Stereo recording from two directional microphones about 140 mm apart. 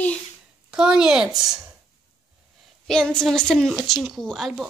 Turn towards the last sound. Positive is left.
turn(degrees=0)  # may be behind; listen again after turning